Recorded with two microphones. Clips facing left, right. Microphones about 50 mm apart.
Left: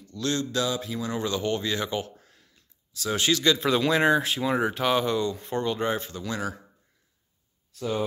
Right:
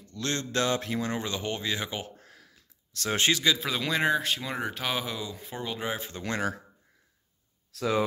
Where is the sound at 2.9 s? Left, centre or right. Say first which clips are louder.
Left 1 dB; right.